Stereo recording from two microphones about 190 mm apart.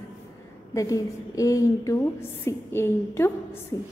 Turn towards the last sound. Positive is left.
turn(degrees=15)  # may be behind; listen again after turning